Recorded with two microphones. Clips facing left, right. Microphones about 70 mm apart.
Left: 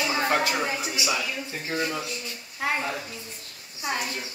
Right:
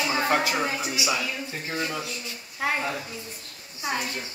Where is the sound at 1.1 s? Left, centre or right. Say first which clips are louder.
Even; centre.